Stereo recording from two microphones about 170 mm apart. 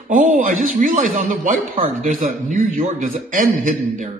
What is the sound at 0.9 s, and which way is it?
A man's voice, 55° right (ahead or behind).